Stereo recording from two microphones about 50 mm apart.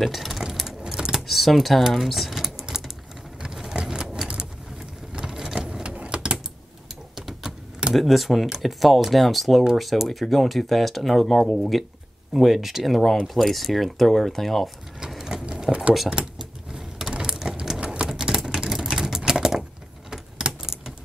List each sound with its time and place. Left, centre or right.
0.0 s speech: centre
0.9 s typing: centre
1.2 s speech: centre
2.7 s typing: centre
3.3 s vehicle: centre
5.1 s vehicle: centre
7.2 s vehicle: centre
7.9 s speech: centre
15.0 s sewing machine: centre
15.7 s speech: centre
16.3 s sewing machine: centre
18.0 s a sound: centre
18.6 s typing: centre